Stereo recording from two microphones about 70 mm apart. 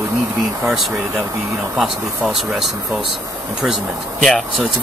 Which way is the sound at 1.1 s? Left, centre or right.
Right.